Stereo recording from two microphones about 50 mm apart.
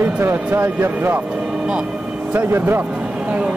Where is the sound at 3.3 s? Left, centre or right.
Right.